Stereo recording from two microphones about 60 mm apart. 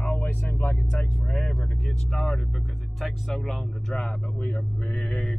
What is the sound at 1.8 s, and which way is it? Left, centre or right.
Speech, centre.